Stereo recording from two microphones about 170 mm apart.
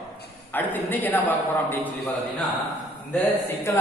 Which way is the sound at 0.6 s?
10° left (ahead or behind).